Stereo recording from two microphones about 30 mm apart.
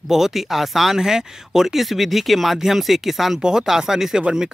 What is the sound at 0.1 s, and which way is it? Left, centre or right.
Speech, centre.